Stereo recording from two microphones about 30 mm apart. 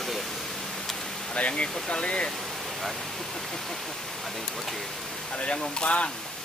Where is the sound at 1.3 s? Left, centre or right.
Left.